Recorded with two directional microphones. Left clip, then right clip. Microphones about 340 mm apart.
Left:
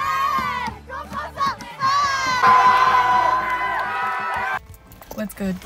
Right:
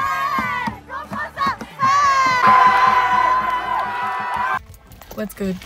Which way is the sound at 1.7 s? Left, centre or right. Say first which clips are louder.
Right 5 dB; centre.